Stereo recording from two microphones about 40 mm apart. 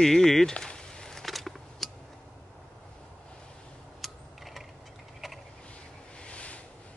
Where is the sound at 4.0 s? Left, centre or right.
Centre.